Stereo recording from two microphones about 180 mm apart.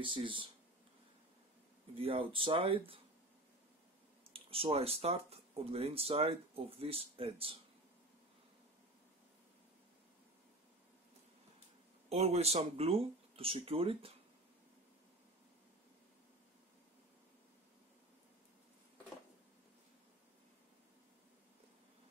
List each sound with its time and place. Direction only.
0.0 s speech: 30° right (ahead or behind)
2.0 s speech: 30° right (ahead or behind)
4.3 s speech: 30° right (ahead or behind)
12.1 s speech: 35° right (ahead or behind)